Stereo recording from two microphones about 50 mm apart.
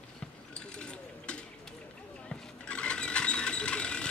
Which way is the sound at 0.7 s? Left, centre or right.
Left.